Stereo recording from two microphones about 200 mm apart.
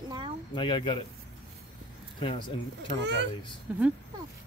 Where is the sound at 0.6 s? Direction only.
25° left (ahead or behind).